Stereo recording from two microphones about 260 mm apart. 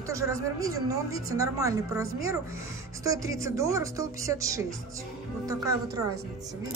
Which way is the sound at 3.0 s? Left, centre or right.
Centre.